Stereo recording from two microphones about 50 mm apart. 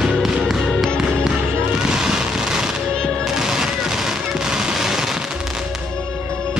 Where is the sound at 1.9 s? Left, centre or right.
Centre.